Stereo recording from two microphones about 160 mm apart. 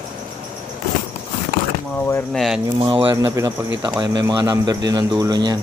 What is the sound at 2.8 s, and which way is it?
Speech, 30° right (ahead or behind).